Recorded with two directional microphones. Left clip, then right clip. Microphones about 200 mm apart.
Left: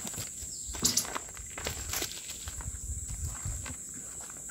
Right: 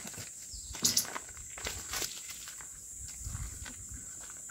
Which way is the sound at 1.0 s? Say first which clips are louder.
Left 3 dB; centre (ahead or behind).